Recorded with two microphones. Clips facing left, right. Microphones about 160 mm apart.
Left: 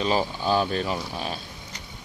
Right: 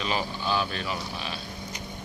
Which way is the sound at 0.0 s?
35° left (ahead or behind).